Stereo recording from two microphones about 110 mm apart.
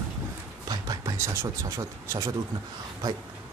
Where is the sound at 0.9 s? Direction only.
35° right (ahead or behind).